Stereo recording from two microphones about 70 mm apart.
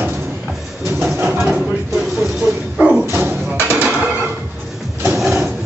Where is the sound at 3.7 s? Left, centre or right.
Centre.